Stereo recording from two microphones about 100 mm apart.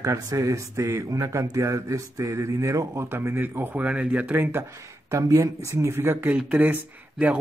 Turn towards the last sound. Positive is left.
turn(degrees=-15)  # may be behind; listen again after turning